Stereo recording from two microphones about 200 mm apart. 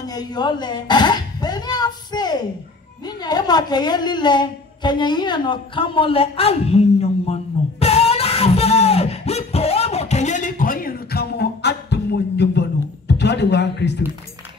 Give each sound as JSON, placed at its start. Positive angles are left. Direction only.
{"t": 0.0, "sound": "dog", "side_deg": 20}
{"t": 3.1, "sound": "a woman's voice", "side_deg": 20}
{"t": 7.8, "sound": "music", "side_deg": 30}
{"t": 13.2, "sound": "a sound", "side_deg": 60}